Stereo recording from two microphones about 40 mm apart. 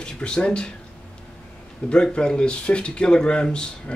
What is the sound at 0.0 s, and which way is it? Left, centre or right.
Speech, left.